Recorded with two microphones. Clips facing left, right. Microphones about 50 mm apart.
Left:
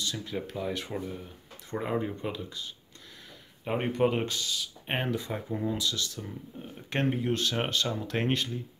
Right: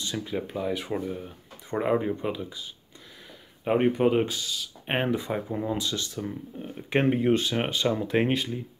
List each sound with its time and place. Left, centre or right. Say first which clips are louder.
0.0 s speech: right 3 dB; centre
3.6 s speech: right 5 dB; centre
4.8 s speech: right 5 dB; centre
5.8 s speech: right 2 dB; right
6.7 s speech: right 6 dB; centre
7.1 s speech: right 7 dB; right
7.4 s speech: right 3 dB; centre